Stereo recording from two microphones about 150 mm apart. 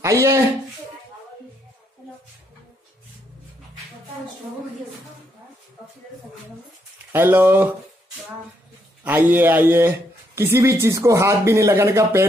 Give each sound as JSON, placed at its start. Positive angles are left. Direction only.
{"t": 0.0, "sound": "speech", "side_deg": -20}
{"t": 7.1, "sound": "a man's voice", "side_deg": -15}
{"t": 9.0, "sound": "a man's voice", "side_deg": -15}